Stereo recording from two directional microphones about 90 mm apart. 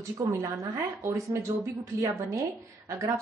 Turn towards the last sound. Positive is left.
turn(degrees=-35)  # may be behind; listen again after turning